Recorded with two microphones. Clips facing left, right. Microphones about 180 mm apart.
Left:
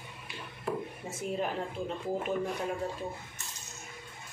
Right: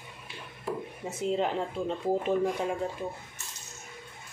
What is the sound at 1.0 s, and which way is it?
Speech, 20° right (ahead or behind).